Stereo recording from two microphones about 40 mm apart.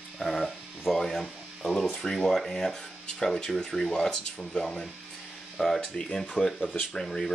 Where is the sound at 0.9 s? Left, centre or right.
Centre.